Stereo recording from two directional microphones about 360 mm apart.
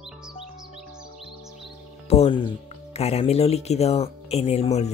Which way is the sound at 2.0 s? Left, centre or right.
Centre.